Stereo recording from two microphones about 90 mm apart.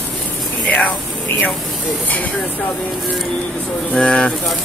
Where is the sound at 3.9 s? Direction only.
10° left (ahead or behind).